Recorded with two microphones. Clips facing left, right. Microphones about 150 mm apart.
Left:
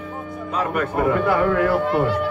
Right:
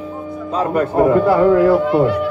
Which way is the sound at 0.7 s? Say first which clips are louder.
Right 8 dB; 35° right (ahead or behind).